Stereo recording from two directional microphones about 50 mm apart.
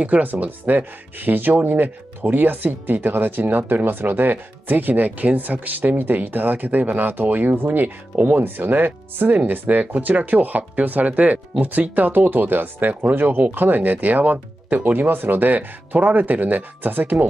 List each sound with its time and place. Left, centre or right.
0.0 s speech: right